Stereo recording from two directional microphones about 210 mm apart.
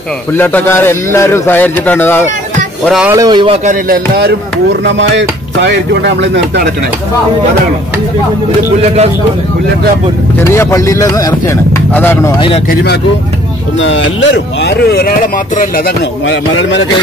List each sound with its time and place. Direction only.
0.3 s speech: 10° left (ahead or behind)
3.1 s speech: 20° right (ahead or behind)
3.6 s music: 45° right (ahead or behind)
4.8 s speech: 60° right (ahead or behind)
10.4 s speech: 15° left (ahead or behind)
12.6 s speech: 50° left (ahead or behind)
13.7 s speech: 60° left (ahead or behind); by 15.8 s 40° left (ahead or behind)
16.3 s speech: 60° left (ahead or behind)